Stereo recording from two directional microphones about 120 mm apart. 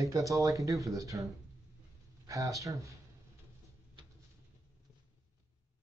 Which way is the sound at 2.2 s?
25° right (ahead or behind).